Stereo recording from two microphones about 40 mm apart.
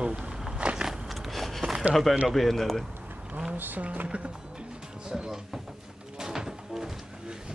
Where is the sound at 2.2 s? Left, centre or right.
Centre.